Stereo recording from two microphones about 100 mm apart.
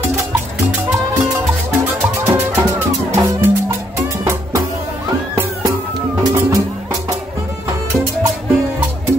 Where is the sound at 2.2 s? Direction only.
25° right (ahead or behind).